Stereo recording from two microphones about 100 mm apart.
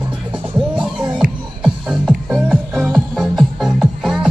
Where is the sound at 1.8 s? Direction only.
5° right (ahead or behind).